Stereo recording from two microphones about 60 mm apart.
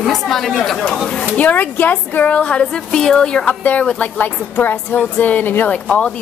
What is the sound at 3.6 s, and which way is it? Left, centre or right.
A woman's voice, left.